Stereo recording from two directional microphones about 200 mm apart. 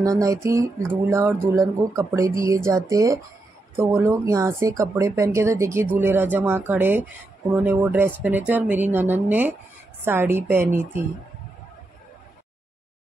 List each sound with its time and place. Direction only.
0.0 s a woman's voice: 15° right (ahead or behind)